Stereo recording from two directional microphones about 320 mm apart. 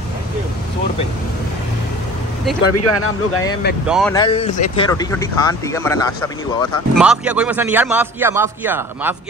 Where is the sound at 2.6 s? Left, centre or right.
Left.